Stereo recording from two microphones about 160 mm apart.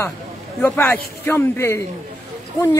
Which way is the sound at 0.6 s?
15° left (ahead or behind).